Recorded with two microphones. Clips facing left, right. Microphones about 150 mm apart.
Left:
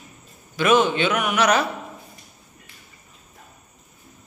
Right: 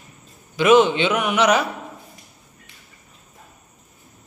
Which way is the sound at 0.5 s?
20° right (ahead or behind).